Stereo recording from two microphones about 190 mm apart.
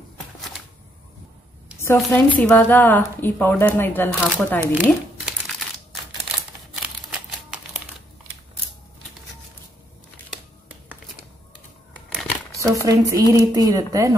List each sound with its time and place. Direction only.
2.0 s speech: 5° left (ahead or behind)
4.7 s crumpling: 5° right (ahead or behind)
7.5 s crumpling: 5° right (ahead or behind)
12.7 s speech: 20° right (ahead or behind)